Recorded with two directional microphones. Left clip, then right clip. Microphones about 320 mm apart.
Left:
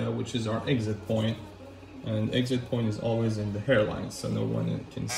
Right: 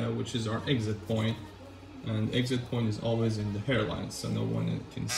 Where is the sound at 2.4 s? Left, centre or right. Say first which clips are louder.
Left 1 dB; left.